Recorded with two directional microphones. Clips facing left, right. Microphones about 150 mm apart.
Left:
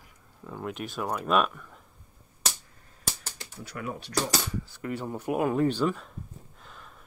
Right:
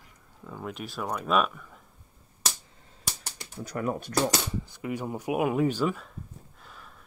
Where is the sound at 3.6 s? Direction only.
45° right (ahead or behind).